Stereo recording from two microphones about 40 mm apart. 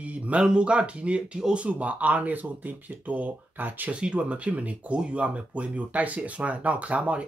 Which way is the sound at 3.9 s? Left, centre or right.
Right.